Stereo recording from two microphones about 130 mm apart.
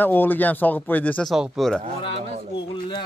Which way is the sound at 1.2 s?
5° right (ahead or behind).